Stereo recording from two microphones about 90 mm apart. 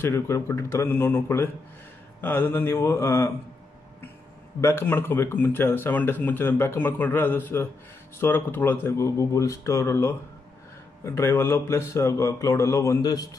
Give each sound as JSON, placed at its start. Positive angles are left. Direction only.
{"t": 0.0, "sound": "speech", "side_deg": 30}
{"t": 4.6, "sound": "speech", "side_deg": 30}